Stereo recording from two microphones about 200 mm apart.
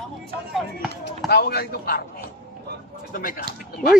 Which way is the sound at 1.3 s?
50° left (ahead or behind).